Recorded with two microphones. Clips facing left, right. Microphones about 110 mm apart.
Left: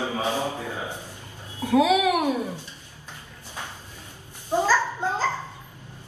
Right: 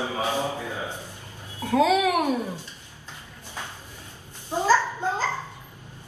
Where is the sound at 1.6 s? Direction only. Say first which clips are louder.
Left 1 dB; 10° left (ahead or behind).